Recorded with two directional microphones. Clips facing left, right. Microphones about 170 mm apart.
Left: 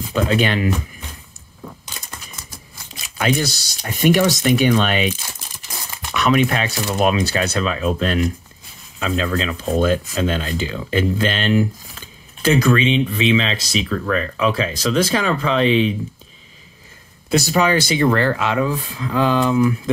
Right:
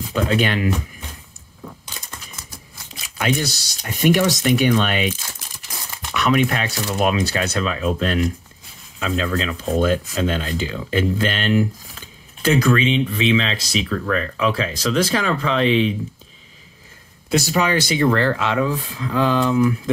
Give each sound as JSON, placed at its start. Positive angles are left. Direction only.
{"t": 0.1, "sound": "speech", "side_deg": 25}
{"t": 3.2, "sound": "speech", "side_deg": 35}
{"t": 6.1, "sound": "speech", "side_deg": 25}
{"t": 17.3, "sound": "speech", "side_deg": 25}